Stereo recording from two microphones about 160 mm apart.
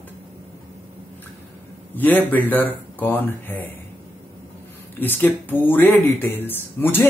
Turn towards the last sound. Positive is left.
turn(degrees=15)  # may be behind; listen again after turning